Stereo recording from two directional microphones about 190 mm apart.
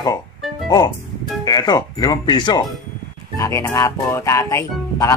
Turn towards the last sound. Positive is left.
turn(degrees=15)  # may be behind; listen again after turning